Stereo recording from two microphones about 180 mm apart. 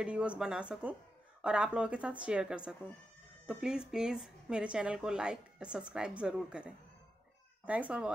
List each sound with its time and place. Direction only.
0.0 s a woman's voice: 5° right (ahead or behind)